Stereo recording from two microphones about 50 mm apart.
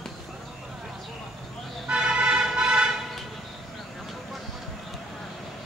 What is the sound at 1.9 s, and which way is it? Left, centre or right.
Music, centre.